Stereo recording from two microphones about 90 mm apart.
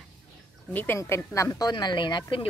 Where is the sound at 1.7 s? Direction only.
60° left (ahead or behind).